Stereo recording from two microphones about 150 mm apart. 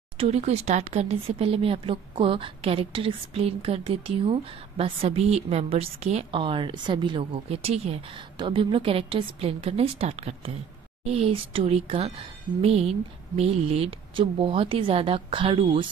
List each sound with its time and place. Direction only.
0.2 s speech: 45° right (ahead or behind)